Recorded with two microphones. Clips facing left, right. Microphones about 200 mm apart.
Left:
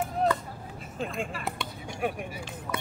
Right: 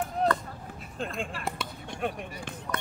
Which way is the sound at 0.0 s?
10° left (ahead or behind).